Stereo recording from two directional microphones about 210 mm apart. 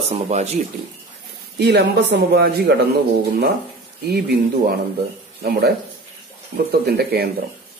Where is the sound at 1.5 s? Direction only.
50° right (ahead or behind).